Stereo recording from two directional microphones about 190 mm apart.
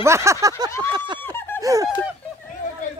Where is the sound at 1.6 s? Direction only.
15° right (ahead or behind).